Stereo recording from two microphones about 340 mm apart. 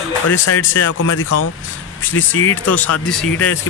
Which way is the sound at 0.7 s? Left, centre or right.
Left.